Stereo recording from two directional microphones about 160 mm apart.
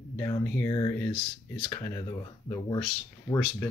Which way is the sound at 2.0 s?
30° left (ahead or behind).